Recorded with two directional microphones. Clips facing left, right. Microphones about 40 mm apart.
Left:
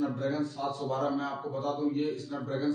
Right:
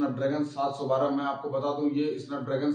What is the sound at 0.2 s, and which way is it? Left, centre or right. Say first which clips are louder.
A man's voice: right 4 dB; right.